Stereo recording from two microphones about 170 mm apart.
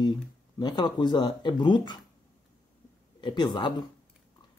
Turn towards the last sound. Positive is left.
turn(degrees=25)  # may be behind; listen again after turning